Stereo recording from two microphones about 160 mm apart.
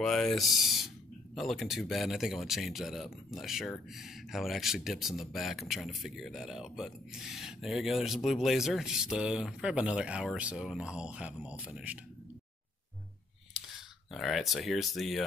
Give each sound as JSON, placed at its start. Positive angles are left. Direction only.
{"t": 0.0, "sound": "speech", "side_deg": 0}
{"t": 13.5, "sound": "speech", "side_deg": 0}